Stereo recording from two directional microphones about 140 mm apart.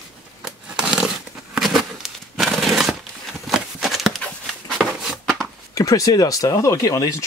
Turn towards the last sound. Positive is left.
turn(degrees=20)  # may be behind; listen again after turning